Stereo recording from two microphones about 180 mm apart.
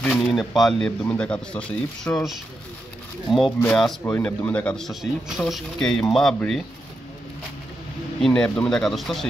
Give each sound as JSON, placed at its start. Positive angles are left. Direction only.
{"t": 0.0, "sound": "speech", "side_deg": 5}
{"t": 8.2, "sound": "speech", "side_deg": 5}